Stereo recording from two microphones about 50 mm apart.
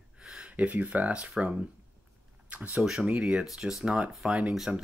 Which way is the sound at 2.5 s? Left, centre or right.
Right.